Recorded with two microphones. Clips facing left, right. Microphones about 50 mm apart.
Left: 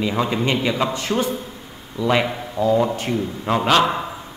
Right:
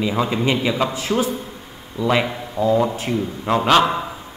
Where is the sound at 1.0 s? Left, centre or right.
Right.